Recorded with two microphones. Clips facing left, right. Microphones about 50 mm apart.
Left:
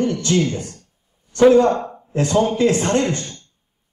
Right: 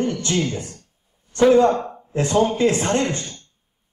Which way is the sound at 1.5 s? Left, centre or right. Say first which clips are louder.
Left 1 dB; right.